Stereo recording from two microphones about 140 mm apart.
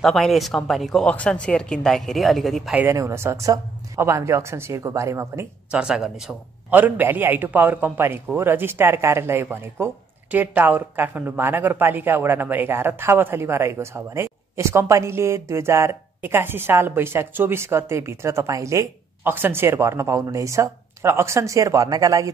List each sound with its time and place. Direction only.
0.0 s a woman's voice: centre (ahead or behind)
2.8 s speech: 20° right (ahead or behind)
5.7 s a man's voice: 5° right (ahead or behind); by 22.3 s 25° right (ahead or behind)